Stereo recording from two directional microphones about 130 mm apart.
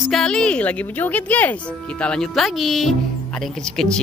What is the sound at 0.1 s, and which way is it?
Speech, 5° left (ahead or behind).